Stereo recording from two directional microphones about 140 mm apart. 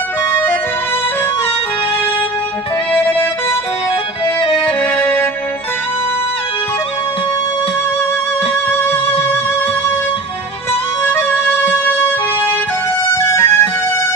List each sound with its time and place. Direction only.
4.9 s music: 15° left (ahead or behind)
11.1 s music: 15° left (ahead or behind)
13.1 s music: 20° left (ahead or behind)